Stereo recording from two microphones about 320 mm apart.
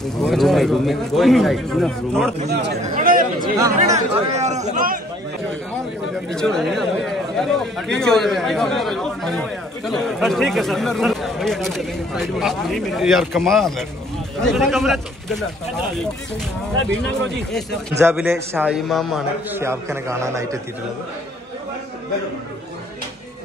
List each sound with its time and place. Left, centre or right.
0.0 s speech: centre
2.3 s chatter: right
3.7 s speech: right
6.3 s speech: centre
17.5 s a man's voice: centre